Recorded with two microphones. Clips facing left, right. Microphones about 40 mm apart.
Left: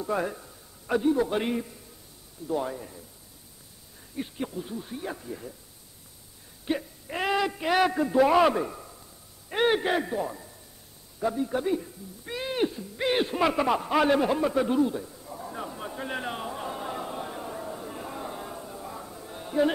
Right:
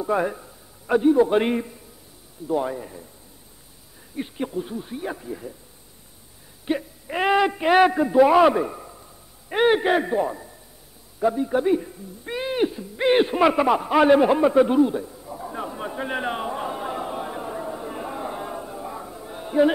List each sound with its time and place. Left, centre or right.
0.0 s a man's voice: centre
1.4 s a man's voice: right
2.4 s speech: centre
4.2 s speech: centre
6.6 s whimper: centre
7.2 s a man's voice: right
11.1 s a sound: centre